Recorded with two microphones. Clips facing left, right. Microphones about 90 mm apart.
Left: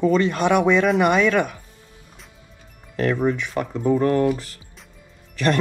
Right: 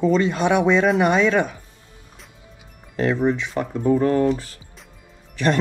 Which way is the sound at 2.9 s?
15° right (ahead or behind).